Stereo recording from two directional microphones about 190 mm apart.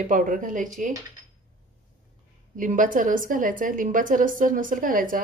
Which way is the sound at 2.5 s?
45° right (ahead or behind).